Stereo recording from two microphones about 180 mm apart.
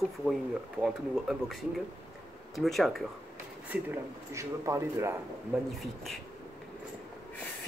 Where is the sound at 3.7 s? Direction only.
15° right (ahead or behind).